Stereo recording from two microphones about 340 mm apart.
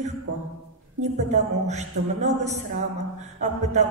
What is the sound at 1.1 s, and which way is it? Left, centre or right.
A woman's voice, centre.